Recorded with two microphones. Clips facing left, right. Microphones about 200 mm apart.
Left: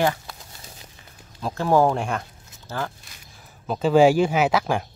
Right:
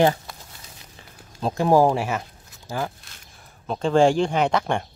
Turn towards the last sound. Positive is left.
turn(degrees=5)  # may be behind; listen again after turning